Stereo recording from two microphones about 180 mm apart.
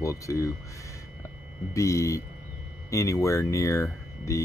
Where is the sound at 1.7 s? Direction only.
15° left (ahead or behind).